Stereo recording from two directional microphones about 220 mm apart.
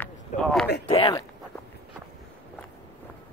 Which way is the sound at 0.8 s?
20° left (ahead or behind).